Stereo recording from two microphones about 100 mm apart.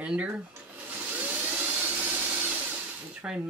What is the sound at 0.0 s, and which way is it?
Vacuum cleaner, 10° right (ahead or behind).